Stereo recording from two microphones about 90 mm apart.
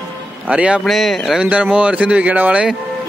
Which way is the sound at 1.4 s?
15° right (ahead or behind).